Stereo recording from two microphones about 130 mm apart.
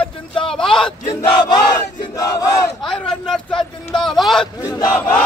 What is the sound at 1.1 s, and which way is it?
Battle cry, 30° left (ahead or behind).